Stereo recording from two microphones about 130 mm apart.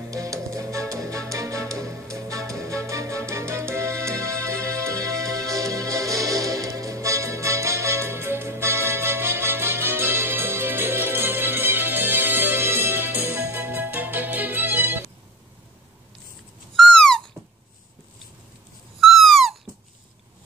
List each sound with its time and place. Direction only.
0.1 s music: 25° right (ahead or behind)
16.7 s owl: 5° left (ahead or behind)
18.9 s owl: centre (ahead or behind)